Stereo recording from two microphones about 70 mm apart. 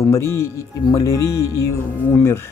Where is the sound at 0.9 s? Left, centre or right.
Left.